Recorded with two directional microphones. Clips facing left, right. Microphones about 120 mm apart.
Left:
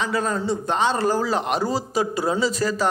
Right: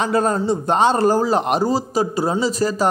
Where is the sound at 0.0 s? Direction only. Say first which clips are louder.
Right 5 dB; 45° right (ahead or behind).